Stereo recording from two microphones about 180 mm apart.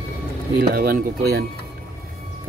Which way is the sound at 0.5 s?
55° right (ahead or behind).